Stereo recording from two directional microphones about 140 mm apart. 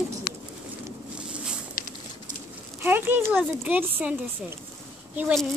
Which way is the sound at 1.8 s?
90° left.